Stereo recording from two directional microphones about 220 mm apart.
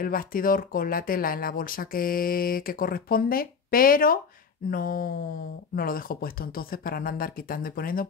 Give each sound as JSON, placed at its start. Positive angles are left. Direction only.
{"t": 0.0, "sound": "speech", "side_deg": 40}